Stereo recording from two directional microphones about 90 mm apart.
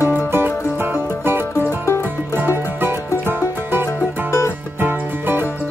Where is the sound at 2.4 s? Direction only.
25° right (ahead or behind).